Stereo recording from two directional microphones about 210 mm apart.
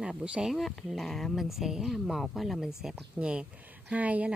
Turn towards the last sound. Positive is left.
turn(degrees=-5)  # may be behind; listen again after turning